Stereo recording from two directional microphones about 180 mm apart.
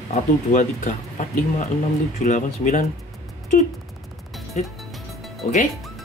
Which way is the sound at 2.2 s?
45° left (ahead or behind).